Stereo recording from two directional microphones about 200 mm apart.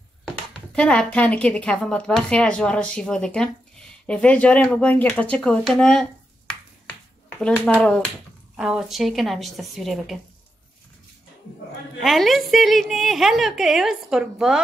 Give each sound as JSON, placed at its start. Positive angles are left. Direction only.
{"t": 0.7, "sound": "a woman's voice", "side_deg": 5}
{"t": 6.9, "sound": "finger snapping", "side_deg": 5}
{"t": 7.8, "sound": "a woman's voice", "side_deg": 5}
{"t": 12.0, "sound": "a woman's voice", "side_deg": 0}